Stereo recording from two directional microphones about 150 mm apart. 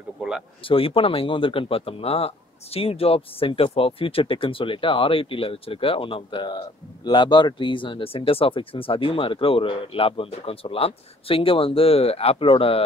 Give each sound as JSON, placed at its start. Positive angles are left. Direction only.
{"t": 0.7, "sound": "speech", "side_deg": 35}